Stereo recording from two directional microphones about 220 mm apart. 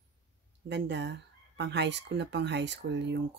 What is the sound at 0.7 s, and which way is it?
Speech, 55° right (ahead or behind).